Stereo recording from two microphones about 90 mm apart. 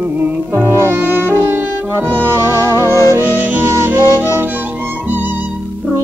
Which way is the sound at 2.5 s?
45° left (ahead or behind).